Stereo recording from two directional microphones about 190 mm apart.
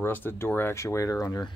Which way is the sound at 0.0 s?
10° left (ahead or behind).